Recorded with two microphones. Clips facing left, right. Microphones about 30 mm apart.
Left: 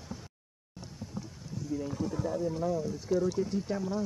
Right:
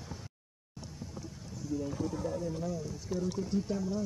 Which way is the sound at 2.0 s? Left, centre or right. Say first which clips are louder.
Left 3 dB; centre.